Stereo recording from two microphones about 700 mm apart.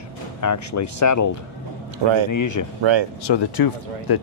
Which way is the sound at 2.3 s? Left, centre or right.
Left.